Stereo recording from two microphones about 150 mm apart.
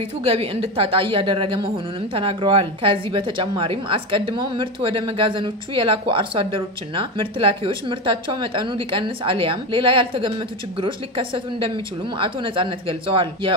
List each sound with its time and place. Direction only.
0.2 s a woman's voice: 40° right (ahead or behind)